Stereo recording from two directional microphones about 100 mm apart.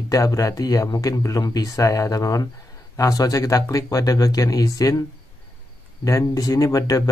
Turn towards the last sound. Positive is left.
turn(degrees=35)  # may be behind; listen again after turning